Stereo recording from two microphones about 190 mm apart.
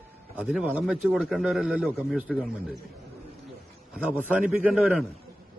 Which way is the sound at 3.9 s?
10° right (ahead or behind).